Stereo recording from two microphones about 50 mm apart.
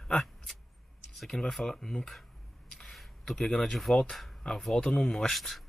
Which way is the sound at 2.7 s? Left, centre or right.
Centre.